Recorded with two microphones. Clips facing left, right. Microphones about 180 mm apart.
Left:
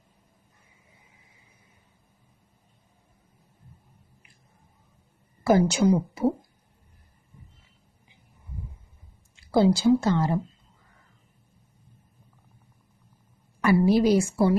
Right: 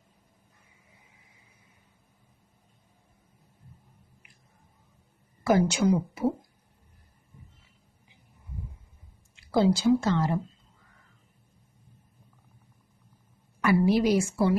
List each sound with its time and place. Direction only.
5.4 s speech: 35° left (ahead or behind)
9.5 s a woman's voice: 30° left (ahead or behind)
13.6 s speech: 35° left (ahead or behind)